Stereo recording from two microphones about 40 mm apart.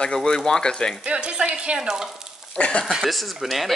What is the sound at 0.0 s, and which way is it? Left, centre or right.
Speech, left.